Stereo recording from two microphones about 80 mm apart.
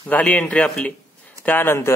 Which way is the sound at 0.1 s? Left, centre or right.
Centre.